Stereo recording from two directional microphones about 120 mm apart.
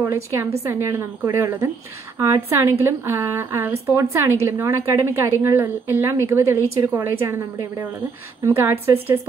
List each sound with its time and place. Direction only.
0.0 s a woman's voice: 20° right (ahead or behind)
8.5 s a woman's voice: 25° right (ahead or behind)